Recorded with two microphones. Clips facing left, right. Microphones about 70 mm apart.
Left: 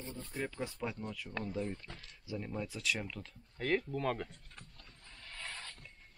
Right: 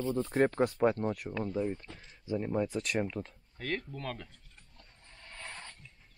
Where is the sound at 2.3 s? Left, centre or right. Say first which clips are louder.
Right 9 dB; right.